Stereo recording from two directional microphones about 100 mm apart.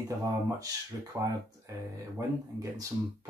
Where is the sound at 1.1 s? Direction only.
15° right (ahead or behind).